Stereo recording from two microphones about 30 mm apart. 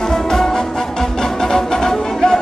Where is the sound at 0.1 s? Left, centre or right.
Centre.